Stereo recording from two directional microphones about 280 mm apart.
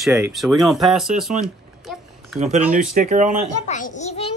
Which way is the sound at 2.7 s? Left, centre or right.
Right.